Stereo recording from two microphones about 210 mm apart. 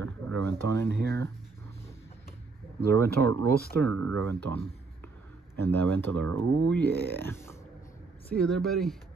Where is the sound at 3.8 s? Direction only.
90° right.